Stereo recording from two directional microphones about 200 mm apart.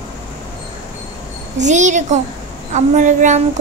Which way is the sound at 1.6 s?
35° right (ahead or behind).